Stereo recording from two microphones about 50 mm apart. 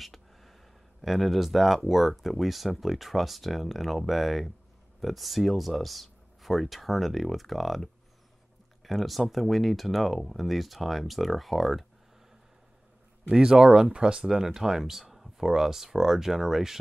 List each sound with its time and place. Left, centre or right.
0.0 s a sound: centre
1.0 s speech: centre
13.3 s speech: centre